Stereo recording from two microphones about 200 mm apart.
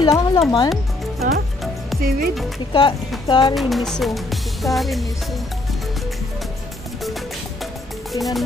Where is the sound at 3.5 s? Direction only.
Centre (ahead or behind).